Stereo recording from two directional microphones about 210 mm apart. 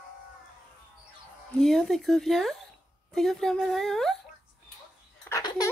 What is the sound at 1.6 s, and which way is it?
A woman's voice, centre (ahead or behind).